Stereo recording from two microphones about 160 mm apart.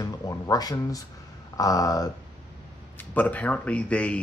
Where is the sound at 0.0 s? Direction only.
25° left (ahead or behind).